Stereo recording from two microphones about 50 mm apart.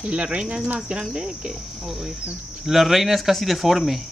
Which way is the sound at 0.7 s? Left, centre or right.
Centre.